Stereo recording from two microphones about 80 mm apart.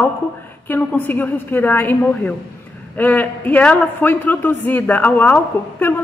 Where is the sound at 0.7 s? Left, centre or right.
Left.